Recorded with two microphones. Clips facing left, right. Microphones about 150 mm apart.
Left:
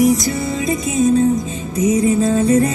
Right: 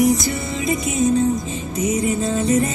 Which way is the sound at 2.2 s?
35° left (ahead or behind).